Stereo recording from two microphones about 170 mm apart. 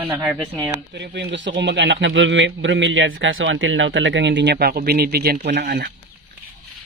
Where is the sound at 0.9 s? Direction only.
90° right; by 5.3 s 70° right (ahead or behind).